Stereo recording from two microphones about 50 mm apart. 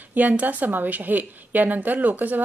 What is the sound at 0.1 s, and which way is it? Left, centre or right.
A woman's voice, right.